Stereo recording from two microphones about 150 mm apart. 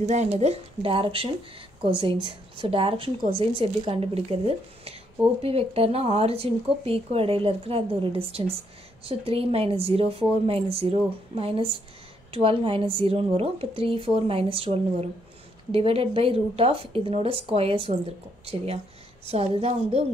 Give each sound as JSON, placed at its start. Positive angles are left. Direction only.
{"t": 0.0, "sound": "a woman's voice", "side_deg": -50}